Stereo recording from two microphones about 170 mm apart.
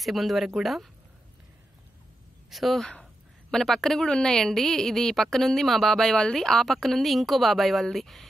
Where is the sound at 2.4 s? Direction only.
Centre (ahead or behind).